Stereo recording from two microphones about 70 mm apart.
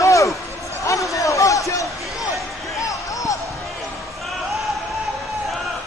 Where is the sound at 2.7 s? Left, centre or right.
Left.